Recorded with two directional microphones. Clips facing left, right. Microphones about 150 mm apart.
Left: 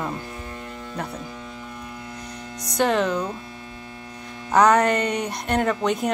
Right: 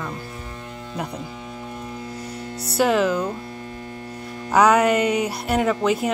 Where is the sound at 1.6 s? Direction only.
30° right (ahead or behind).